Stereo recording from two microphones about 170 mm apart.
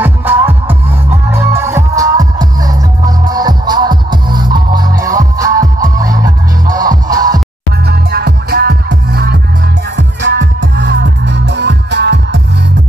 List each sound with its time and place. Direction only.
0.0 s music: 10° right (ahead or behind)
7.8 s music: 70° right (ahead or behind)
9.9 s music: 90° right